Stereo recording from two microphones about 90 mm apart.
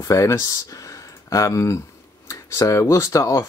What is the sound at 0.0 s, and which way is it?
Speech, 35° left (ahead or behind).